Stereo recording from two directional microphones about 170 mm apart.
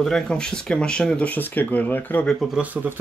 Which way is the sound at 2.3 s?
5° right (ahead or behind).